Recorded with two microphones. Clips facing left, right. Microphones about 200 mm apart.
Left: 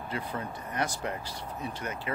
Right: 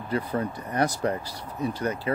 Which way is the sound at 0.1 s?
40° right (ahead or behind).